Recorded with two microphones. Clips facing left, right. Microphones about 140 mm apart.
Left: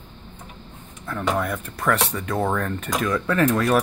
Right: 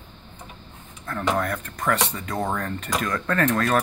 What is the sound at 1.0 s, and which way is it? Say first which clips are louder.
Speech: even; 5° left (ahead or behind).